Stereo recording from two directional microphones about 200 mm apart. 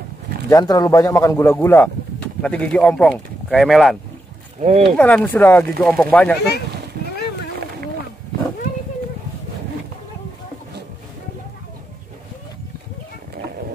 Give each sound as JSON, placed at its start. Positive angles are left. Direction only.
{"t": 0.5, "sound": "speech", "side_deg": 20}
{"t": 4.6, "sound": "speech", "side_deg": -30}
{"t": 4.9, "sound": "speech", "side_deg": 10}